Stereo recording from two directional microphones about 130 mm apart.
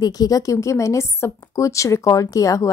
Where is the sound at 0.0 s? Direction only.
30° left (ahead or behind).